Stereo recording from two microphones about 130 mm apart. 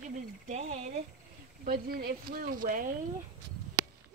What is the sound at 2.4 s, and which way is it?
Speech, 90° right.